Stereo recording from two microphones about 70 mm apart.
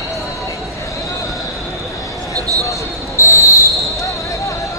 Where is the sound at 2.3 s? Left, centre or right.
Right.